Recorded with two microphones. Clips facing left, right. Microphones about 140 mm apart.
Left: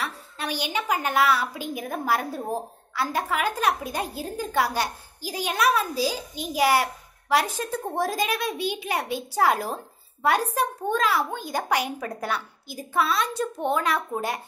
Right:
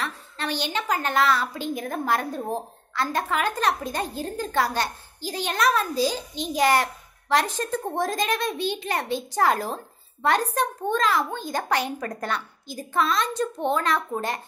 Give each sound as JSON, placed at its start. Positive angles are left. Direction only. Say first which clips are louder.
{"t": 0.0, "sound": "a woman's voice", "louder": "right 1 dB", "side_deg": 10}